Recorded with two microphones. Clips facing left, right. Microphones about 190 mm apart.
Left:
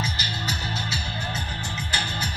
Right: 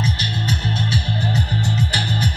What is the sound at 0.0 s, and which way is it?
Music, 25° right (ahead or behind).